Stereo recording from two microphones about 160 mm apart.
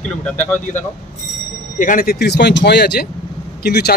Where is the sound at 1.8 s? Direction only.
60° left (ahead or behind).